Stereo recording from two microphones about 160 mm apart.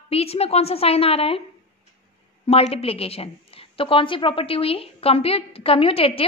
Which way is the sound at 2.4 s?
40° left (ahead or behind).